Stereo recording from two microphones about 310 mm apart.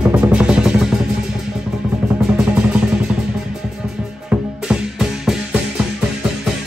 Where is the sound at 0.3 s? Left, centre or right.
Centre.